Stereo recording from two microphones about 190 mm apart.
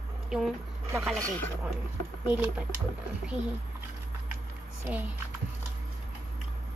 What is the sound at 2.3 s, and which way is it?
Speech, 10° right (ahead or behind).